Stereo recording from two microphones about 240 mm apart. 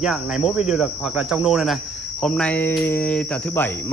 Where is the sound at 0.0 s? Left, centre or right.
Centre.